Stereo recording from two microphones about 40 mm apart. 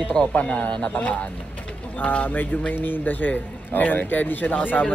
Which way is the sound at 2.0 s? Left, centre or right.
Left.